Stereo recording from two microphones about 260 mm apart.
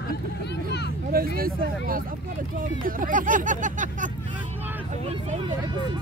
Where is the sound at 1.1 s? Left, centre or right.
Right.